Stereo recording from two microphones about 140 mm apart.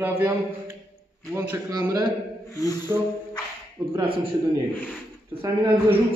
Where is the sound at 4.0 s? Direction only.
40° right (ahead or behind).